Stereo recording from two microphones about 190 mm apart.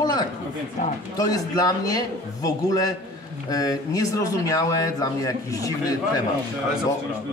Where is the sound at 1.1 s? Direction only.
20° left (ahead or behind).